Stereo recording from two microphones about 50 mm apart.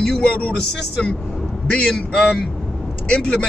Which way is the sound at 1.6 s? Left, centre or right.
Centre.